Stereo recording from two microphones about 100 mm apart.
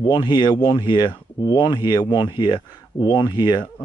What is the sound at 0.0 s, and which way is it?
Speech, 45° left (ahead or behind).